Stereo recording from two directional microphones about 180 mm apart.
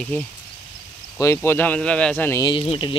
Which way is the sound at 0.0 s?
10° left (ahead or behind).